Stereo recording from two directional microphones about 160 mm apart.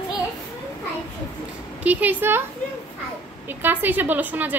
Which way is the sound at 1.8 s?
10° right (ahead or behind).